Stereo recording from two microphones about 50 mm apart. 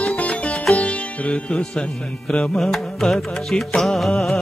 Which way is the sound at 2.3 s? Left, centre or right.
Left.